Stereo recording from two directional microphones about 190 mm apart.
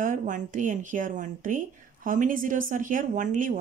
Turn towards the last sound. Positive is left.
turn(degrees=-45)  # may be behind; listen again after turning